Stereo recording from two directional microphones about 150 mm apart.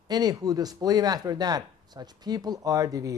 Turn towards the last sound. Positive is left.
turn(degrees=-25)  # may be behind; listen again after turning